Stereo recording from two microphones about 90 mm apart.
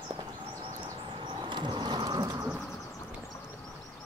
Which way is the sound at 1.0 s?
60° right (ahead or behind).